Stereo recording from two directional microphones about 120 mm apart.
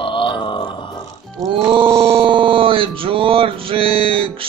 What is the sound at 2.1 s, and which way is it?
Male singing, 45° right (ahead or behind).